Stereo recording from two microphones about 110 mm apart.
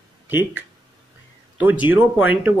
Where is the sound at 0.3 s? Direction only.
20° right (ahead or behind).